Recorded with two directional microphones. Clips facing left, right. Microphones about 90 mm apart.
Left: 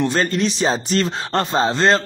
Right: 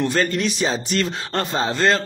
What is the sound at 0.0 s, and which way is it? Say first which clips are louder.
Speech: left 2 dB; 30° left (ahead or behind).